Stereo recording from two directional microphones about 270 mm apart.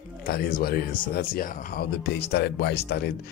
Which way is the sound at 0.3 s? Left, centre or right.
Left.